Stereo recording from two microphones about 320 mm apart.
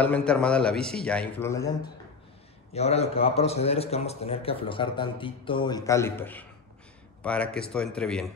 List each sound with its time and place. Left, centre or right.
0.0 s a man's voice: centre
2.7 s a man's voice: centre